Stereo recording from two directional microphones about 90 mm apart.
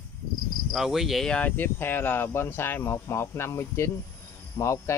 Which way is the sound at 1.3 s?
20° left (ahead or behind).